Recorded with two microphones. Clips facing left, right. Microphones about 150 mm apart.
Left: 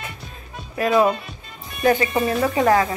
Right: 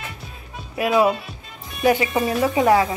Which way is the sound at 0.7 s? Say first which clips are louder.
Even; 10° right (ahead or behind).